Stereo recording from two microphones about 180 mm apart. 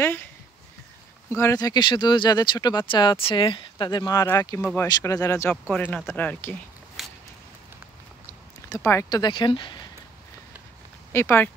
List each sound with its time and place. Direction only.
0.0 s speech: 10° left (ahead or behind)
1.3 s speech: 15° left (ahead or behind)
8.7 s speech: 15° left (ahead or behind)
11.1 s speech: 10° left (ahead or behind)